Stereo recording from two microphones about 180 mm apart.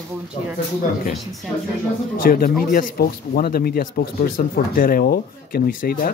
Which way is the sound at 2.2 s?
55° left (ahead or behind).